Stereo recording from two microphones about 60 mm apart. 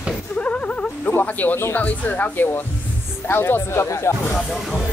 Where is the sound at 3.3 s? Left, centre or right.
Left.